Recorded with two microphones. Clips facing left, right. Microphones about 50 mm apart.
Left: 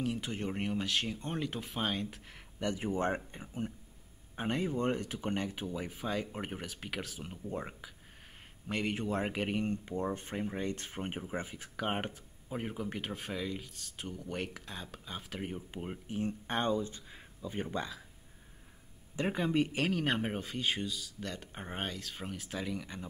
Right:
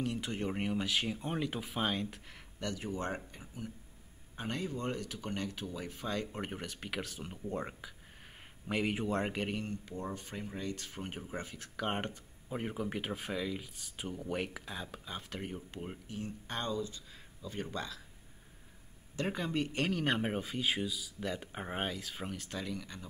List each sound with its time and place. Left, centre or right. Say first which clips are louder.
0.0 s speech: even; centre
2.6 s speech: left 5 dB; left; by 9.6 s centre
9.6 s speech: left 6 dB; left
16.2 s speech: left 6 dB; left
19.1 s speech: left 4 dB; centre